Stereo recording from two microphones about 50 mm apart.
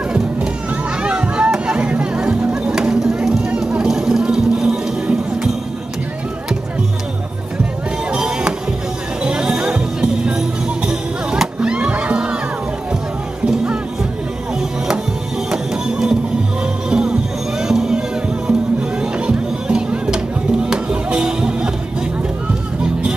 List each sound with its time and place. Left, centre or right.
1.0 s music: right
2.5 s a sound: centre
8.1 s music: centre
10.9 s music: centre
15.5 s music: centre